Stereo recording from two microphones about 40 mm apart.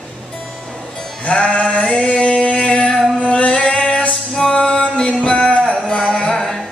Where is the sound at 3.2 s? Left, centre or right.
Left.